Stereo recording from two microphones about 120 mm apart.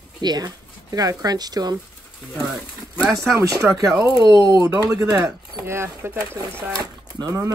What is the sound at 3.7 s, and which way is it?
Speech, 30° right (ahead or behind).